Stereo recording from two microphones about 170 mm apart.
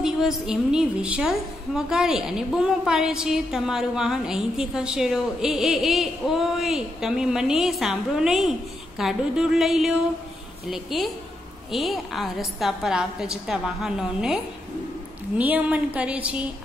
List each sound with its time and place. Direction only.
0.0 s a woman's voice: 5° right (ahead or behind)